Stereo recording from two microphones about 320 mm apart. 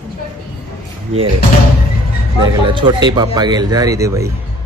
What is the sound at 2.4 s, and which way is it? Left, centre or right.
A man's voice, centre.